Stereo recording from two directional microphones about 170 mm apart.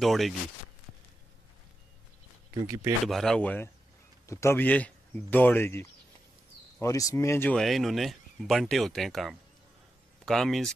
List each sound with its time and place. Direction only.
0.0 s speech: centre (ahead or behind)
2.6 s speech: 20° right (ahead or behind)
3.1 s speech: centre (ahead or behind)